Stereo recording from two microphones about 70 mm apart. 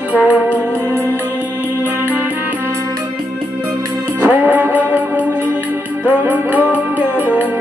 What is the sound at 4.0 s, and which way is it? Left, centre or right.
Music, right.